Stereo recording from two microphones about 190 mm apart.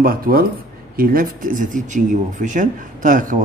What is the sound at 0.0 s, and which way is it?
A man's voice, 50° right (ahead or behind).